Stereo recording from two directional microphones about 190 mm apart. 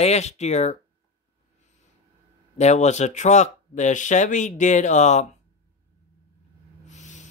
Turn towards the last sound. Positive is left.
turn(degrees=40)  # may be behind; listen again after turning